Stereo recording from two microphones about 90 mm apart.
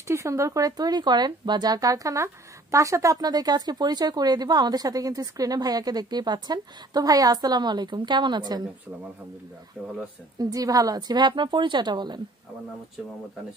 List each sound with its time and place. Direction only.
0.1 s speech: 35° right (ahead or behind); by 8.6 s 50° right (ahead or behind)
10.4 s speech: 45° right (ahead or behind)